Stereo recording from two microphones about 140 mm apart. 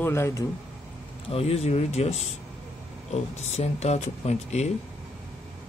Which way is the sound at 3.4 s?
50° left (ahead or behind).